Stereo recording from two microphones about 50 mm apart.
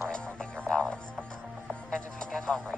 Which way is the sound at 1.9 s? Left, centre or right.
Centre.